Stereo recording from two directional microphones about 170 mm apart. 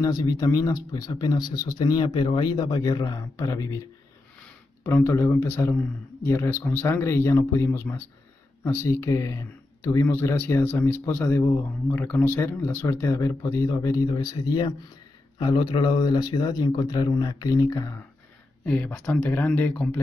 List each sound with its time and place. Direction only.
0.0 s speech: 20° left (ahead or behind)
4.8 s speech: 15° left (ahead or behind)
18.7 s speech: 10° left (ahead or behind)